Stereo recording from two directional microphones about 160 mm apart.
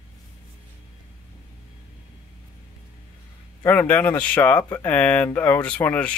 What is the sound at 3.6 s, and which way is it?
Speech, 10° left (ahead or behind).